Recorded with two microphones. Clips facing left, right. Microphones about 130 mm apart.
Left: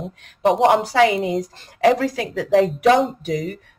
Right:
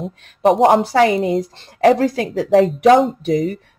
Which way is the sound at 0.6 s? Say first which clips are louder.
Right 1 dB; 40° right (ahead or behind).